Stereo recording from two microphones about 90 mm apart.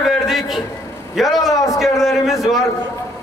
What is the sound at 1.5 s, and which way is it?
Speech, 35° left (ahead or behind).